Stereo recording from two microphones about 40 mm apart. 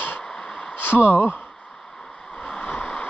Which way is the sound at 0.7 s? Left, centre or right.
Left.